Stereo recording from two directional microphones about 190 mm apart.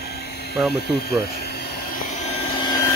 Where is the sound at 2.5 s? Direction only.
20° left (ahead or behind).